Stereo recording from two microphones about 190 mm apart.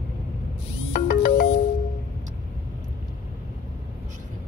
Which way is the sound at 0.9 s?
50° left (ahead or behind).